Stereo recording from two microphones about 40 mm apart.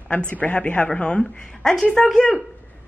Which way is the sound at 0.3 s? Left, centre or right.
Left.